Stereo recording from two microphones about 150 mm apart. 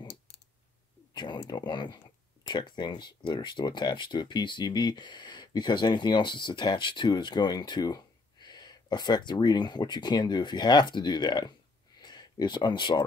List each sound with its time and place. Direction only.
1.1 s speech: 30° left (ahead or behind)